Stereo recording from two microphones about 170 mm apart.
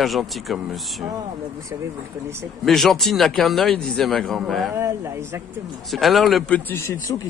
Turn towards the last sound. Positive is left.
turn(degrees=15)  # may be behind; listen again after turning